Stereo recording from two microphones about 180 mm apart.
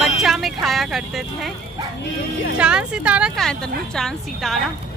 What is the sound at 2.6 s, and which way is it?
Speech, 5° right (ahead or behind).